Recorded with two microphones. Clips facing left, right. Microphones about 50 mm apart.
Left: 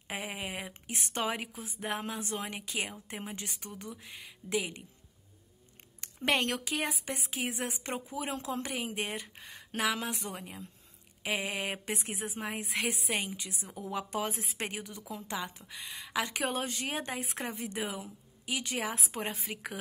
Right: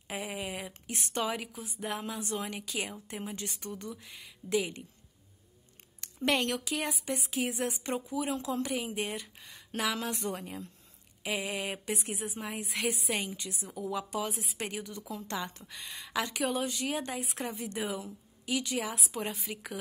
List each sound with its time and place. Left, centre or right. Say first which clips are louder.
0.1 s a woman's voice: right 1 dB; left
5.9 s a woman's voice: even; left
10.1 s speech: right 5 dB; centre
11.2 s a woman's voice: even; left
15.3 s speech: even; centre
16.2 s a woman's voice: right 1 dB; left